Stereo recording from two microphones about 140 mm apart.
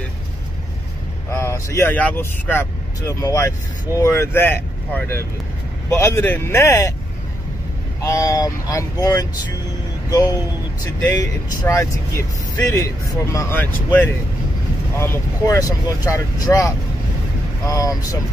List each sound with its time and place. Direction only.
1.4 s speech: 20° left (ahead or behind)
3.0 s speech: 25° left (ahead or behind)
8.0 s speech: 25° left (ahead or behind)